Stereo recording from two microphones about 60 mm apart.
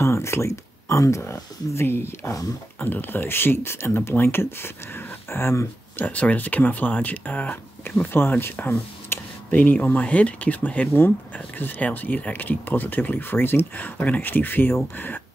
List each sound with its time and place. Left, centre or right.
0.0 s speech: left
5.9 s speech: left
7.9 s speech: left
8.5 s a sound: left
9.8 s speech: left